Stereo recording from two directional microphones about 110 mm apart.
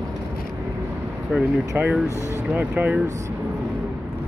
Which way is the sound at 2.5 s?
15° right (ahead or behind).